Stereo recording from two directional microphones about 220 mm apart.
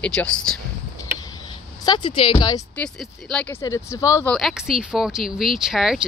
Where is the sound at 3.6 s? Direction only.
15° left (ahead or behind).